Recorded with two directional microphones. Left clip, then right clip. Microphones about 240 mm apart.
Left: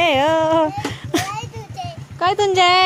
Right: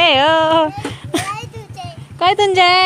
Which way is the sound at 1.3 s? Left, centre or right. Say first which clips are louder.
Right 2 dB; right.